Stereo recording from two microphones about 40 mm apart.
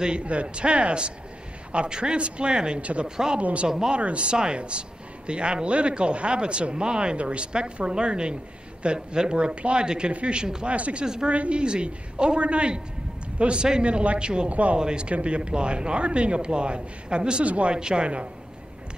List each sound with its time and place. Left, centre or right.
0.0 s a man's voice: right
2.8 s speech: right
3.6 s speech: centre
3.9 s a man's voice: right
14.8 s a man's voice: right
17.7 s a man's voice: right